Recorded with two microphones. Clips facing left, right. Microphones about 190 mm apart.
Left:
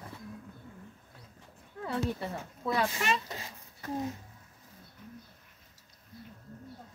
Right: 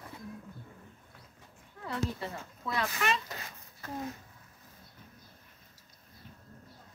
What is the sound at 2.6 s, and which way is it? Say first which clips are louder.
Speech: left 3 dB; 30° left (ahead or behind).